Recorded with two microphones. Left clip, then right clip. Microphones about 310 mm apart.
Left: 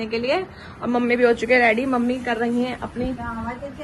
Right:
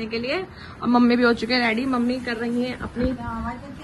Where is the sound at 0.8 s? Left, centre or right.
Centre.